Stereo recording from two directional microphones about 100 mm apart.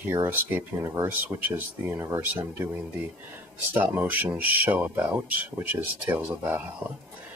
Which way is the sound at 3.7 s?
20° right (ahead or behind).